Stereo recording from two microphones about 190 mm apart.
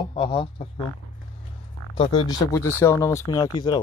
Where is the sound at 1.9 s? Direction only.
25° left (ahead or behind).